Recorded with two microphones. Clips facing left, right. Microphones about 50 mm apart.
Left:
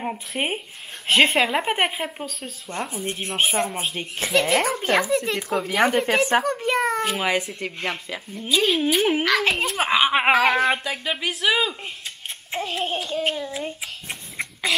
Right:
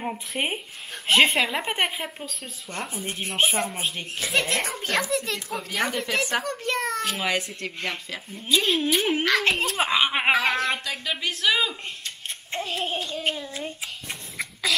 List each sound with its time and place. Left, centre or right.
0.0 s a child's voice: centre
3.0 s child singing: centre
3.8 s a child's voice: centre
4.8 s a child's voice: centre
12.4 s child singing: centre
14.4 s a sound: left